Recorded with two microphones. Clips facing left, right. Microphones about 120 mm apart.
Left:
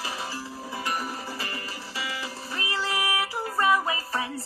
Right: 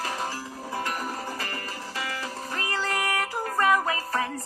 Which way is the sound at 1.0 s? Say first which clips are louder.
Right 1 dB; 45° right (ahead or behind).